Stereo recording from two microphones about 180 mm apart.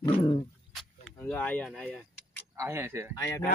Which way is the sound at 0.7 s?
5° left (ahead or behind).